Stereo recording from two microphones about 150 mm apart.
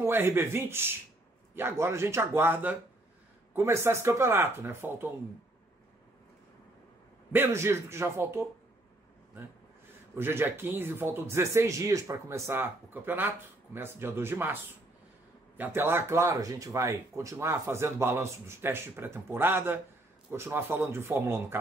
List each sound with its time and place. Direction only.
0.0 s speech: 15° right (ahead or behind)
7.3 s speech: 15° right (ahead or behind)
10.1 s speech: 15° right (ahead or behind)